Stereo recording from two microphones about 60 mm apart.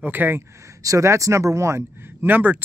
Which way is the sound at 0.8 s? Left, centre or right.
Right.